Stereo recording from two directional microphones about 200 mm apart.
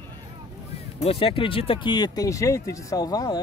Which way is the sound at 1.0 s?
30° left (ahead or behind).